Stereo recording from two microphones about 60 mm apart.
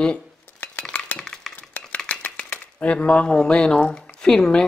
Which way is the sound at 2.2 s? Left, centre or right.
Left.